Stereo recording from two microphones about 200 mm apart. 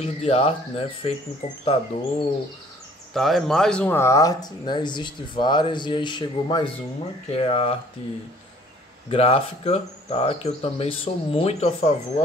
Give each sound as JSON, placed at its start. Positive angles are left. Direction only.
{"t": 0.0, "sound": "speech", "side_deg": 30}
{"t": 3.1, "sound": "speech", "side_deg": 0}
{"t": 9.1, "sound": "speech", "side_deg": 30}